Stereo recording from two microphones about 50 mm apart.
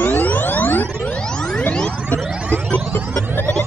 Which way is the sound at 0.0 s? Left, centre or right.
Left.